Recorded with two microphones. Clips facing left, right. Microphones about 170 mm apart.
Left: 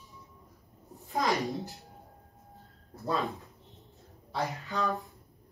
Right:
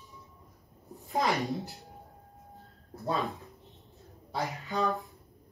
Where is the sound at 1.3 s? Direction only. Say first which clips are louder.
Even; centre (ahead or behind).